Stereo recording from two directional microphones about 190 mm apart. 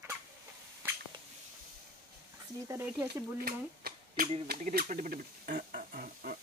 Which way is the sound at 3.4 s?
50° right (ahead or behind).